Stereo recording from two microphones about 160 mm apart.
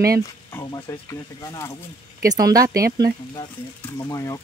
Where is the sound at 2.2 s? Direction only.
25° right (ahead or behind).